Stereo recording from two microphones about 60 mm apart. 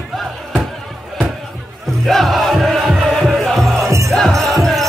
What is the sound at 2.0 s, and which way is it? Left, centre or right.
Music, centre.